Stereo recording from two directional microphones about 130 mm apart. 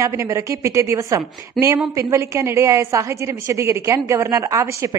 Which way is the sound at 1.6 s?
5° left (ahead or behind).